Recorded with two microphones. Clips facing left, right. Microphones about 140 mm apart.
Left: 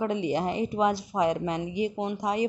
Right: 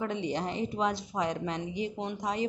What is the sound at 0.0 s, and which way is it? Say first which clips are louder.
A woman's voice: left 5 dB; 5° left (ahead or behind).